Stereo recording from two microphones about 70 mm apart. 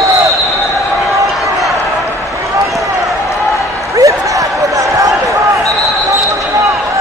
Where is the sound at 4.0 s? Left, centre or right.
Right.